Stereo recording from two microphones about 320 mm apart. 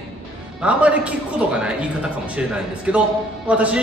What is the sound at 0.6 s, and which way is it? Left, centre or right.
A man's voice, centre.